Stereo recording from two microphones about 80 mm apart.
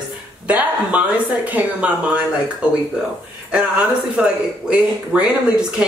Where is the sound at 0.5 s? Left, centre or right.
Centre.